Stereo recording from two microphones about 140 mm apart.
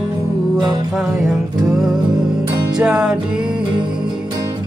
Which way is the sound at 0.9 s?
5° right (ahead or behind).